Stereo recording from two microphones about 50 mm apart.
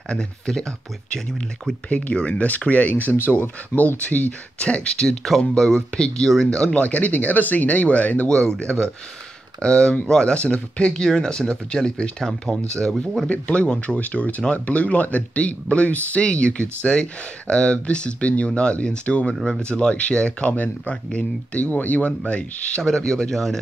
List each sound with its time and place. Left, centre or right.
0.1 s speech: centre
1.9 s speech: left
3.1 s speech: left
4.1 s speech: left; by 6.7 s centre
6.7 s speech: left
8.5 s speech: centre
12.2 s speech: centre
13.3 s speech: left
19.3 s speech: centre
19.6 s speech: left
20.5 s speech: left
20.9 s speech: left